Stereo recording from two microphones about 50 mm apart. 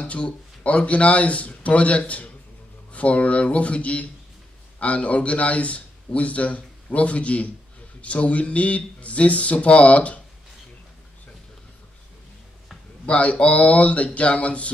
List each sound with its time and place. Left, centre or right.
0.0 s a man's voice: left
13.0 s a man's voice: left